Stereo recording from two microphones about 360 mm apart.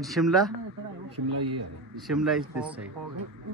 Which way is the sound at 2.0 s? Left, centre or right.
Centre.